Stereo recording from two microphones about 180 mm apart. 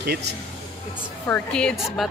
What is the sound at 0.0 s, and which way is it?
Speech, 60° right (ahead or behind).